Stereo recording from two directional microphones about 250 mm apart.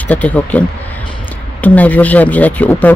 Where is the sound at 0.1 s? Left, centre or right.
Centre.